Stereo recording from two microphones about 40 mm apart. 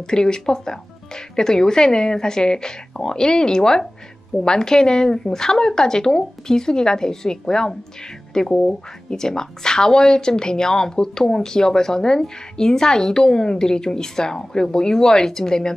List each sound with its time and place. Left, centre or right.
0.0 s a woman's voice: centre